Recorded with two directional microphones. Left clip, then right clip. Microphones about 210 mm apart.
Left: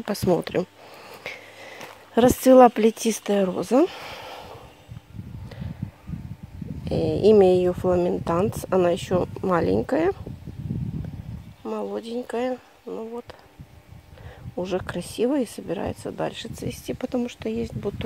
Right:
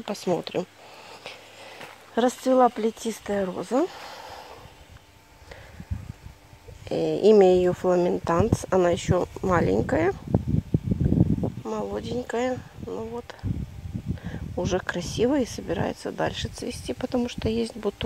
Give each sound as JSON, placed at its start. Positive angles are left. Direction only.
{"t": 0.0, "sound": "speech", "side_deg": 25}
{"t": 1.2, "sound": "a sound", "side_deg": 20}
{"t": 2.4, "sound": "speech", "side_deg": 35}
{"t": 6.8, "sound": "speech", "side_deg": 10}
{"t": 11.6, "sound": "speech", "side_deg": 10}
{"t": 14.2, "sound": "speech", "side_deg": 5}